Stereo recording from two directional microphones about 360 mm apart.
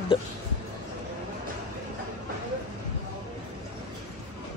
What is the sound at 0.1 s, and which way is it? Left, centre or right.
Speech, centre.